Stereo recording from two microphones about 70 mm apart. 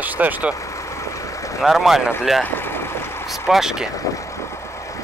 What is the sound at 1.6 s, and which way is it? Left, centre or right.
Speech, centre.